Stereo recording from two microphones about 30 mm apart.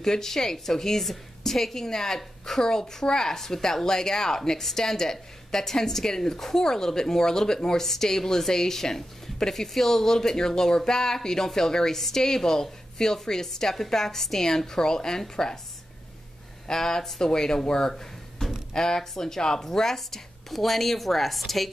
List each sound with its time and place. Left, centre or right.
0.0 s a woman's voice: centre
16.6 s a woman's voice: centre